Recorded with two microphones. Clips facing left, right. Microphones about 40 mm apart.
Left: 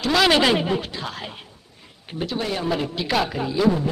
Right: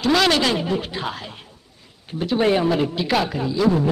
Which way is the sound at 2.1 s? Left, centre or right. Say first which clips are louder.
Right 2 dB; left.